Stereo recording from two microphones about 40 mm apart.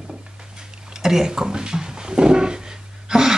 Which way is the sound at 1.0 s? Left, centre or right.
Centre.